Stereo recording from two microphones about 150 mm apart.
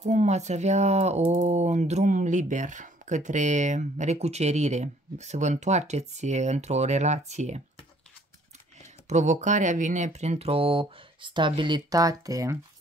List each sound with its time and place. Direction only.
0.0 s speech: 50° right (ahead or behind)
9.1 s speech: 55° right (ahead or behind); by 12.5 s 20° right (ahead or behind)